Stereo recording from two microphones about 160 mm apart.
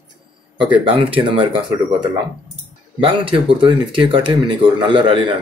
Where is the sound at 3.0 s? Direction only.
35° right (ahead or behind).